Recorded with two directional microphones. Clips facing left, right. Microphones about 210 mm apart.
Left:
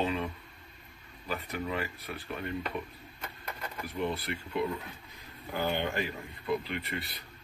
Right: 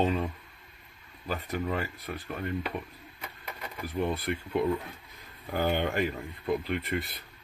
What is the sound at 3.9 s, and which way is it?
Speech, 50° right (ahead or behind).